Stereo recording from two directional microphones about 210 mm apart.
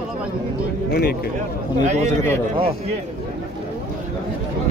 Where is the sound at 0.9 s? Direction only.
50° left (ahead or behind).